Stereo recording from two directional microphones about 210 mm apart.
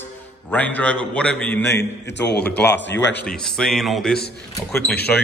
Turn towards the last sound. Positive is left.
turn(degrees=5)  # may be behind; listen again after turning